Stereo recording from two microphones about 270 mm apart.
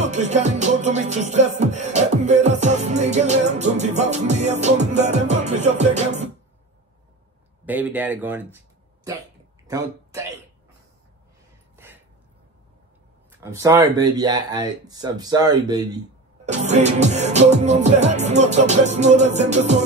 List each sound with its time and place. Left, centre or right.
0.0 s music: right
7.6 s speech: centre
9.7 s speech: centre
11.7 s a sound: centre
13.4 s speech: centre
16.4 s music: right